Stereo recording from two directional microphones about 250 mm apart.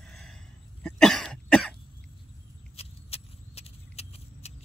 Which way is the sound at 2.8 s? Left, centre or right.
Left.